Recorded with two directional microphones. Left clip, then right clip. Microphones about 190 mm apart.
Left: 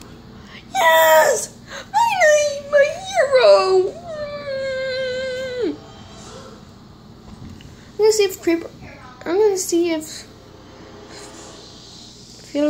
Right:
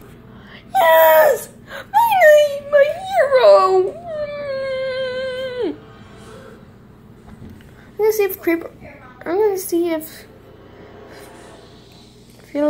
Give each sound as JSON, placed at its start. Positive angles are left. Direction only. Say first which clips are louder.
{"t": 0.7, "sound": "screaming", "louder": "right 2 dB", "side_deg": 5}
{"t": 8.0, "sound": "a sound", "louder": "left 1 dB", "side_deg": 10}
{"t": 9.7, "sound": "speech", "louder": "even", "side_deg": 10}
{"t": 12.5, "sound": "speech", "louder": "right 1 dB", "side_deg": 10}